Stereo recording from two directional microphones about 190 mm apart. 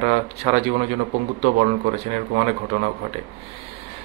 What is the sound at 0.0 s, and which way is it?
Speech, 35° right (ahead or behind).